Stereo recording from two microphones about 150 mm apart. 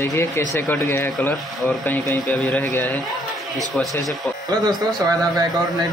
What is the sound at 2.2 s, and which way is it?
Speech, 10° left (ahead or behind).